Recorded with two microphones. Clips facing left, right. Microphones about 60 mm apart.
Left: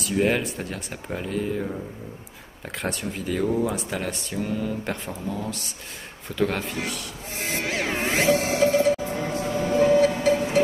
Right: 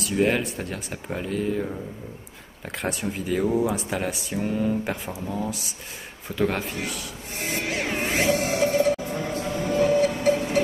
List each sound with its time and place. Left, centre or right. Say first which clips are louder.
0.0 s speech: even; centre
2.8 s speech: right 1 dB; centre
4.8 s speech: even; centre
7.3 s music: left 1 dB; left
8.7 s music: left 1 dB; left
9.1 s a sound: left 1 dB; left